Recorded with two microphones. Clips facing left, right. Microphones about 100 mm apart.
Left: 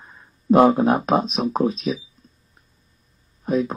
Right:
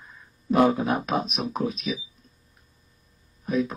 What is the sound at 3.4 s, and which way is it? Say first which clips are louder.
Speech: left 4 dB; 35° left (ahead or behind).